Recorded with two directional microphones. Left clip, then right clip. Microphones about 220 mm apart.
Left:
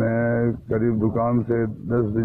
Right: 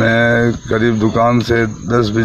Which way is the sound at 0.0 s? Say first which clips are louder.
Right 10 dB; 15° right (ahead or behind).